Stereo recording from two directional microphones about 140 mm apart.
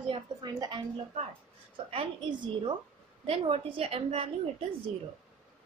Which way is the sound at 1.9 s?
35° right (ahead or behind).